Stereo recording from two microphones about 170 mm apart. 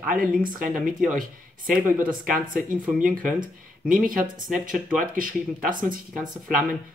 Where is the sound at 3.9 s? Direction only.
55° right (ahead or behind).